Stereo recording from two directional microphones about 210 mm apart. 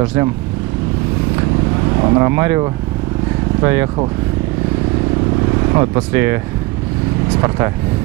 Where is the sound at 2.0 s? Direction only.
20° right (ahead or behind).